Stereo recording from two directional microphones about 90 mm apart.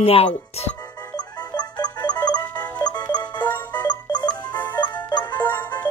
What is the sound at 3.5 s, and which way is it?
Music, 20° left (ahead or behind).